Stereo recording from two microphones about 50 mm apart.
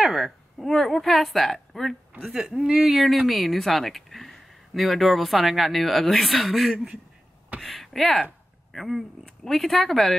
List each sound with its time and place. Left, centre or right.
0.0 s a sound: centre
0.7 s speech: centre
2.3 s speech: centre
3.0 s speech: centre